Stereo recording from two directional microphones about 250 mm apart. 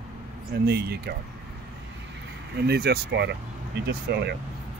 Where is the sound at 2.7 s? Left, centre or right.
Right.